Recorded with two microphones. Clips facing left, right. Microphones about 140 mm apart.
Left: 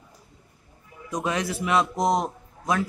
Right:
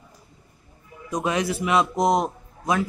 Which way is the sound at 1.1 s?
15° right (ahead or behind).